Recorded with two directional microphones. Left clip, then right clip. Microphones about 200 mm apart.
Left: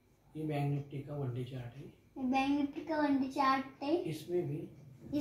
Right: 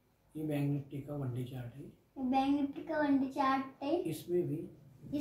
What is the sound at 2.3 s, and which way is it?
A child's voice, 10° right (ahead or behind).